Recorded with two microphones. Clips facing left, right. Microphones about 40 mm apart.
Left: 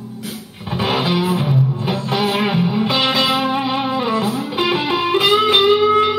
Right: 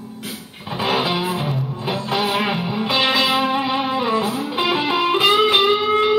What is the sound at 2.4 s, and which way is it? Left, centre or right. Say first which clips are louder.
Music: left 4 dB; centre.